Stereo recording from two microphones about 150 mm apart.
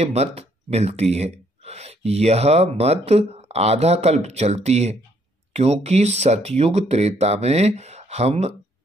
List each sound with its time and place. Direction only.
0.0 s speech: 45° right (ahead or behind)